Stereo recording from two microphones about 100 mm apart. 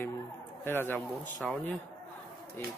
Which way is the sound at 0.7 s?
20° left (ahead or behind).